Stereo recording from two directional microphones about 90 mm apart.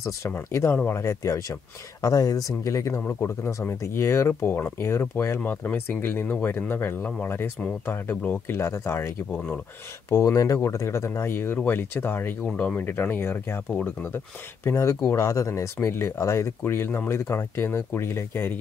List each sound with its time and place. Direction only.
0.0 s speech: 30° left (ahead or behind)
2.0 s speech: 45° left (ahead or behind)
5.4 s speech: 20° left (ahead or behind)
12.4 s speech: 10° left (ahead or behind)
12.8 s speech: 20° left (ahead or behind)